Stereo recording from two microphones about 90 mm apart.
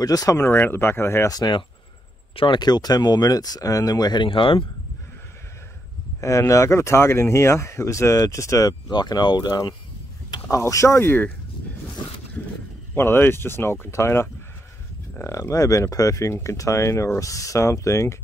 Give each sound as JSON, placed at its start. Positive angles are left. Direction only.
{"t": 0.0, "sound": "speech", "side_deg": 40}
{"t": 0.5, "sound": "speech", "side_deg": 25}
{"t": 1.3, "sound": "speech", "side_deg": 50}
{"t": 2.3, "sound": "speech", "side_deg": 60}
{"t": 6.2, "sound": "speech", "side_deg": 35}
{"t": 10.6, "sound": "speech", "side_deg": 35}
{"t": 12.9, "sound": "speech", "side_deg": 25}